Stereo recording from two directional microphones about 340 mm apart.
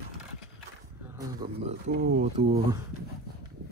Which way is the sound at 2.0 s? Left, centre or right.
Right.